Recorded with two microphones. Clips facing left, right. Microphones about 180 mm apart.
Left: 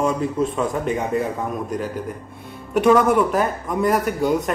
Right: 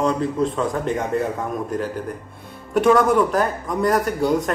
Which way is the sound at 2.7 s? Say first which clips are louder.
Even; 5° left (ahead or behind).